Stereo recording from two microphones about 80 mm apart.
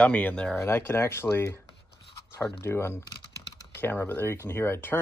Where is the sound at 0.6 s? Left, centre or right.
Left.